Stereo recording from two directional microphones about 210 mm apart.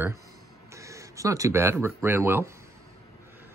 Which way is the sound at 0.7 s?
15° right (ahead or behind).